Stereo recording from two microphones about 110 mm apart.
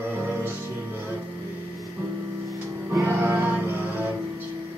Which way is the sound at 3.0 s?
20° right (ahead or behind).